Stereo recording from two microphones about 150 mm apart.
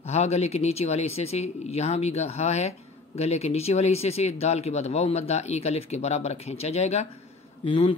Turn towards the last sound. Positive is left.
turn(degrees=35)  # may be behind; listen again after turning